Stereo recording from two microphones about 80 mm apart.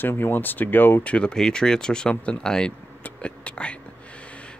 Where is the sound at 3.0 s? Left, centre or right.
Centre.